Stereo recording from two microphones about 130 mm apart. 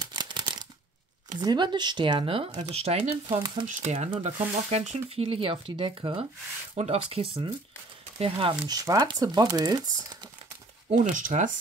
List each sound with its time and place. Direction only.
0.0 s a sound: 35° right (ahead or behind)
1.4 s speech: 35° right (ahead or behind)
2.7 s speech: 50° right (ahead or behind)
3.6 s speech: 60° right (ahead or behind)
5.1 s speech: 45° right (ahead or behind)
6.7 s speech: 55° right (ahead or behind)
8.6 s speech: 30° right (ahead or behind)
11.1 s speech: 90° right